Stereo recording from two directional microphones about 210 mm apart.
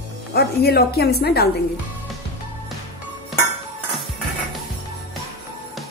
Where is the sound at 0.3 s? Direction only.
50° left (ahead or behind).